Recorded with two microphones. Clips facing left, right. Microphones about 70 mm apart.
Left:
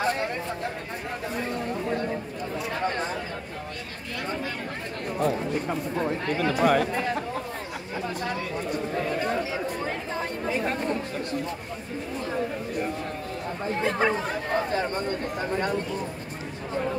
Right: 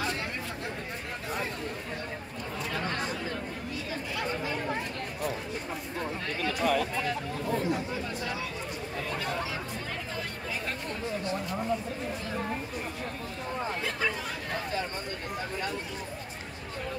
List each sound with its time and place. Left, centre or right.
6.4 s speech: left
13.7 s chatter: left